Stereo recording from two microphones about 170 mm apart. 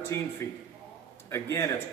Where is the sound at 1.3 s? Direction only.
20° left (ahead or behind).